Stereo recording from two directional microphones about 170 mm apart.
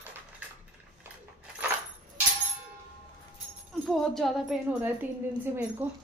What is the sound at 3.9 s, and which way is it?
A woman's voice, centre (ahead or behind).